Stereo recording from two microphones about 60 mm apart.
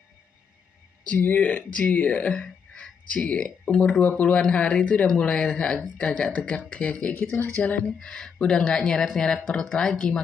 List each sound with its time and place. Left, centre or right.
1.0 s speech: left
8.0 s speech: centre